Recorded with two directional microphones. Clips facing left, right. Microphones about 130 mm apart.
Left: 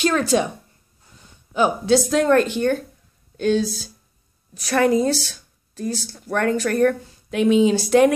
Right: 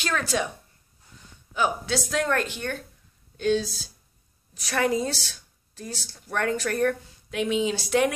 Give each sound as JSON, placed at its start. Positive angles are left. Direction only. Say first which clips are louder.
{"t": 0.0, "sound": "speech", "louder": "left 8 dB", "side_deg": 20}
{"t": 1.5, "sound": "speech", "louder": "left 8 dB", "side_deg": 25}
{"t": 3.3, "sound": "speech", "louder": "left 4 dB", "side_deg": 50}